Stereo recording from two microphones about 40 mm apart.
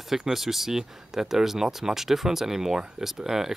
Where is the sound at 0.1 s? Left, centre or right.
Centre.